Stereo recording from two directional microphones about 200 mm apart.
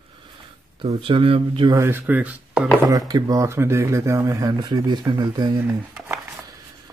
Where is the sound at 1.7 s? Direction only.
10° right (ahead or behind).